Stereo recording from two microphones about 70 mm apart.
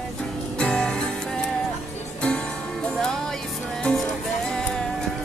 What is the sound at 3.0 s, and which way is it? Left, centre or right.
Music, centre.